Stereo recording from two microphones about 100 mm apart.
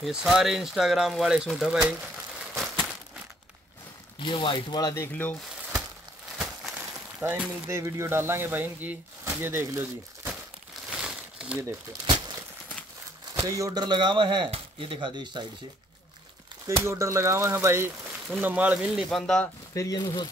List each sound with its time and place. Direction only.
0.0 s speech: 5° right (ahead or behind)
2.5 s a sound: 5° left (ahead or behind)
4.2 s speech: 55° left (ahead or behind)
5.1 s speech: 15° left (ahead or behind)
6.3 s a sound: 5° right (ahead or behind)
6.7 s a sound: 15° right (ahead or behind)
7.8 s speech: 25° right (ahead or behind)
11.0 s crumpling: 5° right (ahead or behind)
13.3 s speech: 35° right (ahead or behind); by 15.4 s 50° right (ahead or behind)
16.8 s speech: 30° right (ahead or behind); by 19.0 s 15° right (ahead or behind)
19.0 s speech: 5° left (ahead or behind)
19.7 s speech: 30° left (ahead or behind)